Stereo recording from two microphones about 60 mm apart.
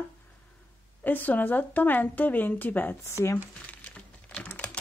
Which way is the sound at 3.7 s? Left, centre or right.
Left.